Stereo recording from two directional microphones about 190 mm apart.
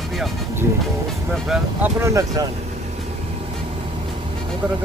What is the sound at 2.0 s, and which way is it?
Speech, 15° right (ahead or behind).